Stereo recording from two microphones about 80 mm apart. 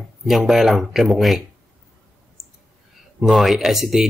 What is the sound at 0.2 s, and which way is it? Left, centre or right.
Speech, centre.